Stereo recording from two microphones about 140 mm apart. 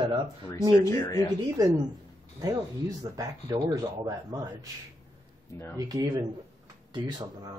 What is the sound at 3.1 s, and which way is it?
Speech, 25° right (ahead or behind).